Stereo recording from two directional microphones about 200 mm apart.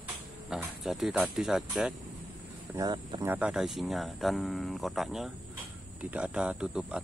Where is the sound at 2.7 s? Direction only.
20° right (ahead or behind).